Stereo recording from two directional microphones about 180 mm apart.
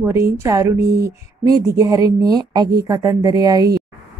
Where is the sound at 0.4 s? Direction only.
15° right (ahead or behind).